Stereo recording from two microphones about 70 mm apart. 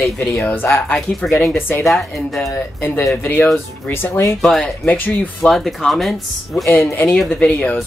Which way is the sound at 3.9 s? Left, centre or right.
Left.